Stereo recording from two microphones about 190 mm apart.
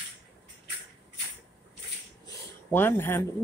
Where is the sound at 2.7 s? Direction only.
10° left (ahead or behind).